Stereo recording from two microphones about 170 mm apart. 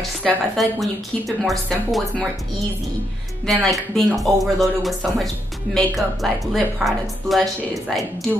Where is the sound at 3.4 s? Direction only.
Centre (ahead or behind).